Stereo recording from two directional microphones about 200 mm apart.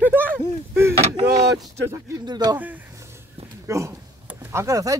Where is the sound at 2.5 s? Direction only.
10° right (ahead or behind).